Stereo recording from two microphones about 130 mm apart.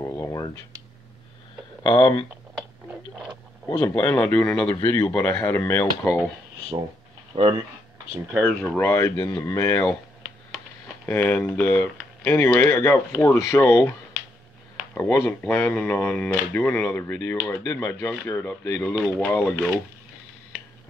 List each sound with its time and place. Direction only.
0.0 s a sound: 25° left (ahead or behind)
1.8 s speech: 35° left (ahead or behind)
3.6 s speech: 25° left (ahead or behind)
7.3 s speech: 55° right (ahead or behind)
8.3 s speech: centre (ahead or behind)
8.7 s speech: 20° left (ahead or behind)
11.1 s speech: 15° left (ahead or behind)
11.6 s speech: 20° left (ahead or behind)
15.0 s speech: 20° left (ahead or behind)